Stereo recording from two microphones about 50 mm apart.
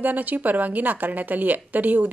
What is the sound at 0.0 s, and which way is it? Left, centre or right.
A woman's voice, right.